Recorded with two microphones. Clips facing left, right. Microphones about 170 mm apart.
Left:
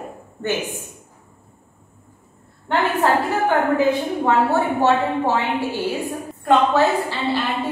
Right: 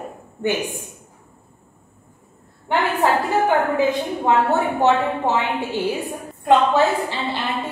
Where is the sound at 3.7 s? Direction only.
20° right (ahead or behind).